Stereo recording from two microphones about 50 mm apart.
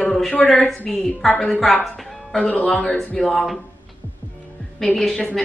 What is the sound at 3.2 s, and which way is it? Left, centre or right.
Speech, centre.